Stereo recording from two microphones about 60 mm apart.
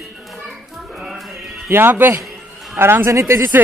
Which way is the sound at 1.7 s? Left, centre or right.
Right.